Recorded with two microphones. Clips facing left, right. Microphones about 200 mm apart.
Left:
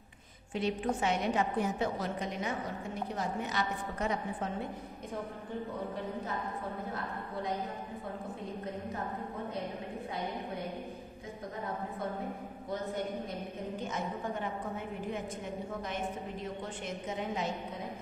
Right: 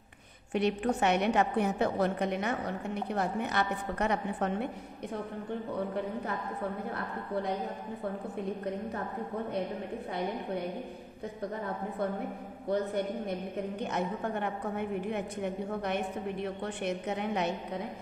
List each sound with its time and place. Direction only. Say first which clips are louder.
0.5 s a woman's voice: right 4 dB; 65° right (ahead or behind)
13.7 s a woman's voice: right 3 dB; 65° right (ahead or behind)